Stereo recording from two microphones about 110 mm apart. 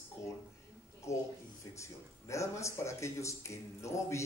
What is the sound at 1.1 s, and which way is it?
Speech, 25° left (ahead or behind).